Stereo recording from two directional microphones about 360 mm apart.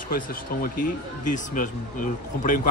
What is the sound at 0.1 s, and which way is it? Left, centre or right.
Speech, left.